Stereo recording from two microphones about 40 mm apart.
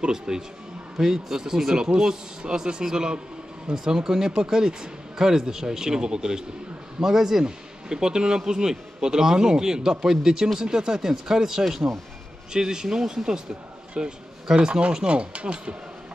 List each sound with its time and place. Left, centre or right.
0.0 s a man's voice: centre